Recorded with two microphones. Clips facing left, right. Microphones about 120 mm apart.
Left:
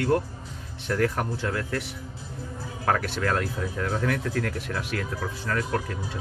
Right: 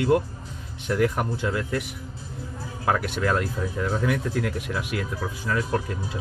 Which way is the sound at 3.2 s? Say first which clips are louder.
Right 2 dB; 10° right (ahead or behind).